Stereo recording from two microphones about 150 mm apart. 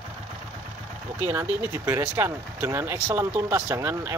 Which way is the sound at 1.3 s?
20° right (ahead or behind).